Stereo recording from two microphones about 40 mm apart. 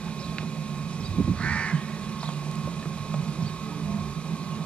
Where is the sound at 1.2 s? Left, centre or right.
Left.